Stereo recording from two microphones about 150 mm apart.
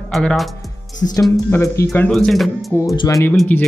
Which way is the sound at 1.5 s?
20° left (ahead or behind).